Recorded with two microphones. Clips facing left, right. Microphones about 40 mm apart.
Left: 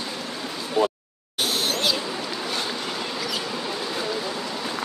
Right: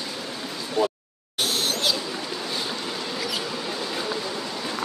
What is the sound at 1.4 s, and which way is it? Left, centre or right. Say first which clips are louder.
Owl: left 1 dB; centre.